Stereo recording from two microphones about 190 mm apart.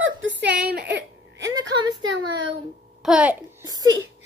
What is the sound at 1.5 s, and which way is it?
Speech, 20° right (ahead or behind).